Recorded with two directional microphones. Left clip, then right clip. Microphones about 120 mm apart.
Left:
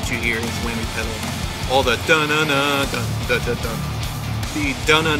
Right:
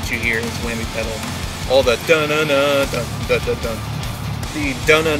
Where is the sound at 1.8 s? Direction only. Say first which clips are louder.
Right 2 dB; 35° left (ahead or behind).